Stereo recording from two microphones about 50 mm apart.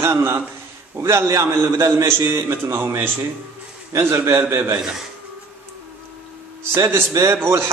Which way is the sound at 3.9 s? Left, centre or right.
Right.